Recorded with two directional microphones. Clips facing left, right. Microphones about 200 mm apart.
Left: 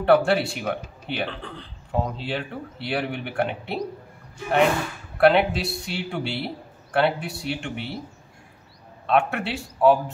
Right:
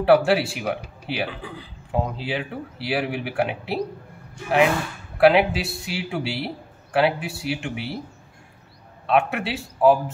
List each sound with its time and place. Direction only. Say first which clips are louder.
0.0 s speech: right 1 dB; 5° right (ahead or behind)
5.2 s speech: right 1 dB; 5° right (ahead or behind)
9.0 s speech: right 1 dB; 5° right (ahead or behind)